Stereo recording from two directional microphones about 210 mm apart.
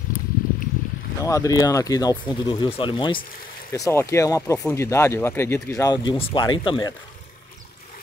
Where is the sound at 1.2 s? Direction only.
15° left (ahead or behind).